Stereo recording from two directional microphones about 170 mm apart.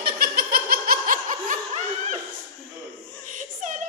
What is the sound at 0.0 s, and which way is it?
Laughter, 65° right (ahead or behind).